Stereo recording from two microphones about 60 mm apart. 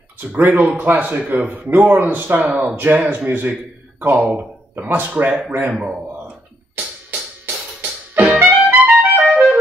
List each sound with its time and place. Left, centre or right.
0.3 s speech: right
6.1 s music: right
9.3 s clarinet: centre